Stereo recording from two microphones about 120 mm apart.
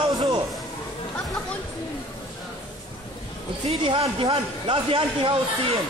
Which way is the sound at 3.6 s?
50° right (ahead or behind).